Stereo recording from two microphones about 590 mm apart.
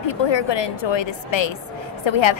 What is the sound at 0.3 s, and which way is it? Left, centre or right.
A woman's voice, left.